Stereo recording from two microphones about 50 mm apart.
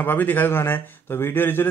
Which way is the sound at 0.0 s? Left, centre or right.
Left.